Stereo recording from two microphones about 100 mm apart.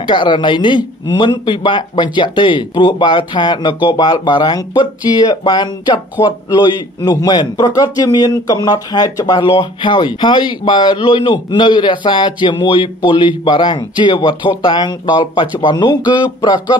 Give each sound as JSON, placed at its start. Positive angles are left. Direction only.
{"t": 0.0, "sound": "a man's voice", "side_deg": 50}